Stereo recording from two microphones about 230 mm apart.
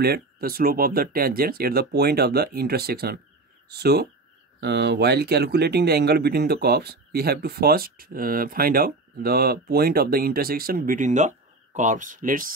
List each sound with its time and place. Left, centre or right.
0.0 s speech: right